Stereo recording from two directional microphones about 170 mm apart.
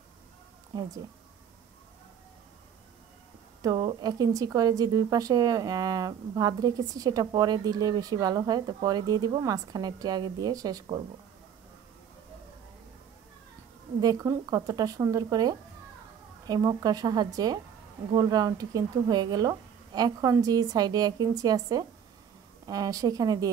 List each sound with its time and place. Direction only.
0.7 s a woman's voice: 25° right (ahead or behind)
3.6 s a woman's voice: 25° right (ahead or behind)
14.0 s a woman's voice: 20° right (ahead or behind)